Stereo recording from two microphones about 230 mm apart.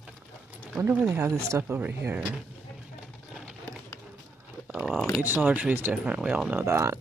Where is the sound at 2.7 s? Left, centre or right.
Centre.